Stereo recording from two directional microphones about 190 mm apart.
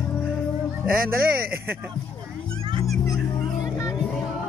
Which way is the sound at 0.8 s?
50° right (ahead or behind).